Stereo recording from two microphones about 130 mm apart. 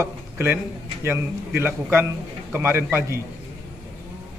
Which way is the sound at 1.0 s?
15° right (ahead or behind).